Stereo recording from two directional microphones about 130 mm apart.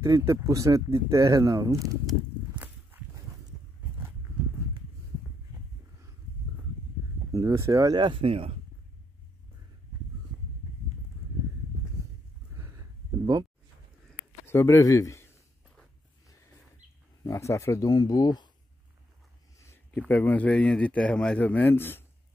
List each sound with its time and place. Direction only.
0.0 s speech: 25° right (ahead or behind)
7.3 s speech: 25° right (ahead or behind)
8.0 s speech: 40° right (ahead or behind)
12.5 s a sound: 20° right (ahead or behind)
14.4 s speech: 20° left (ahead or behind)
17.2 s speech: 20° left (ahead or behind)
19.6 s speech: 20° left (ahead or behind)